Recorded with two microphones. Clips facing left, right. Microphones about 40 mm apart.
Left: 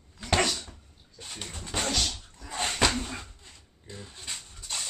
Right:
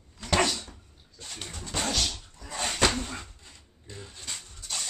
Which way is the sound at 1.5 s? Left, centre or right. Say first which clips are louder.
Left 1 dB; left.